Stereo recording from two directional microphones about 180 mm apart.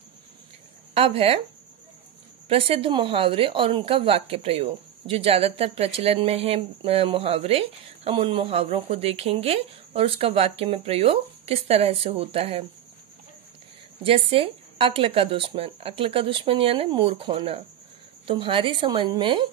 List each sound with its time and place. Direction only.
0.9 s speech: 30° right (ahead or behind)
2.4 s speech: 30° right (ahead or behind)
14.0 s a woman's voice: 30° right (ahead or behind)